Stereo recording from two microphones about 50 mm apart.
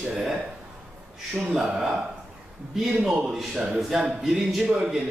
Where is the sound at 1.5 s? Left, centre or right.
Centre.